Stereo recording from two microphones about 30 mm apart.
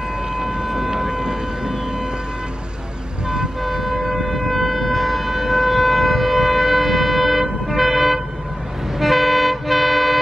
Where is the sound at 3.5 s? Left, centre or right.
Centre.